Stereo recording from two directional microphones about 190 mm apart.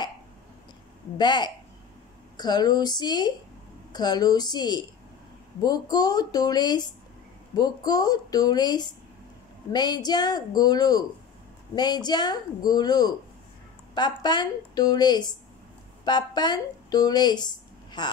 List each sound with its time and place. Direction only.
1.1 s a woman's voice: 25° left (ahead or behind)